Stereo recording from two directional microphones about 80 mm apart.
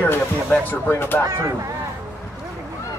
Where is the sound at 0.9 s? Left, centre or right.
Left.